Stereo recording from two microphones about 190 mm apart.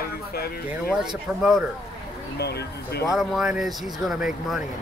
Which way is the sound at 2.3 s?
60° left (ahead or behind).